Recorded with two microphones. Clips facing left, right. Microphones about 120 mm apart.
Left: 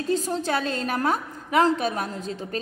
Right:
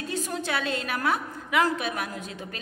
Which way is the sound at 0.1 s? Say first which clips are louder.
Left 6 dB; 35° left (ahead or behind).